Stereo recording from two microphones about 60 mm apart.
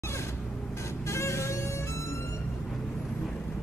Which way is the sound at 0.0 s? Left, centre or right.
Left.